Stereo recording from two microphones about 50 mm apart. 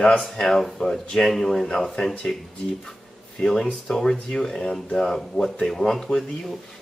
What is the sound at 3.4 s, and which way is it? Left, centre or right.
Speech, centre.